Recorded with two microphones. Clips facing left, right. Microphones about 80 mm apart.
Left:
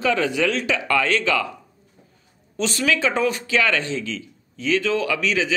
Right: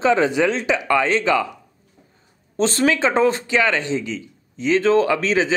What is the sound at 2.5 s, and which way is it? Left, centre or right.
Speech, right.